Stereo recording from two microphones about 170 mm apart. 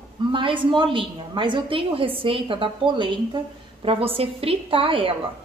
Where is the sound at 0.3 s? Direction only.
30° right (ahead or behind).